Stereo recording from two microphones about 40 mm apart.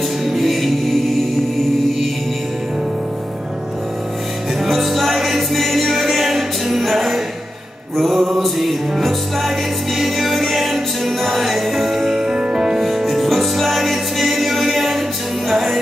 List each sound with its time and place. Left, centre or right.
0.2 s music: centre
4.6 s music: centre
9.9 s music: centre
12.3 s music: right
12.8 s music: centre